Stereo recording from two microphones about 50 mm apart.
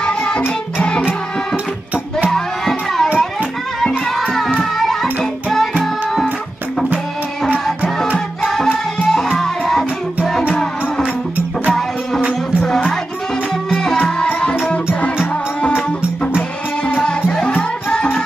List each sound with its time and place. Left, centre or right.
0.0 s music: left
2.3 s music: centre
4.6 s music: centre
9.1 s music: centre
11.0 s music: right
14.0 s music: centre
15.7 s music: centre
17.5 s music: left